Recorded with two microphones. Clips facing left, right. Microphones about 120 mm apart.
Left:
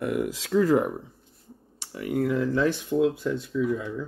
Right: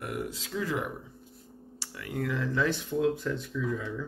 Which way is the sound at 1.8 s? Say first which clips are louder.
Left 8 dB; 20° left (ahead or behind).